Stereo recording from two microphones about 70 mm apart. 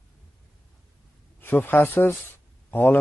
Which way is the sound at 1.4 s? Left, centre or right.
Left.